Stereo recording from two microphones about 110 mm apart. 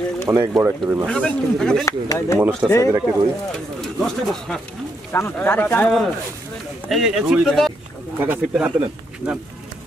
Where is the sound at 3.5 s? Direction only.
5° left (ahead or behind).